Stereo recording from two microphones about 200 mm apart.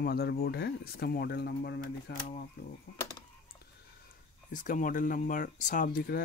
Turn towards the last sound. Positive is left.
turn(degrees=50)  # may be behind; listen again after turning